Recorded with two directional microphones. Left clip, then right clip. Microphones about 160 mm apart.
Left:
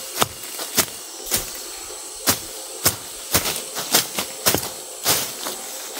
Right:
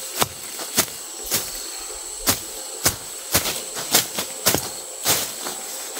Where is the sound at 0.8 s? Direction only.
5° left (ahead or behind).